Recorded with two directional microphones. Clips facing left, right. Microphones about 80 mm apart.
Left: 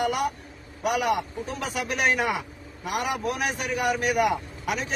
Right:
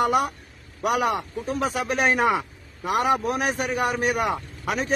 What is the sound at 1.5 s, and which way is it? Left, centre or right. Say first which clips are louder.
A man's voice: right 5 dB; right.